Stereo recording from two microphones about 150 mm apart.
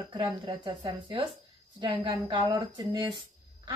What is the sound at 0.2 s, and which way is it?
Speech, 30° right (ahead or behind).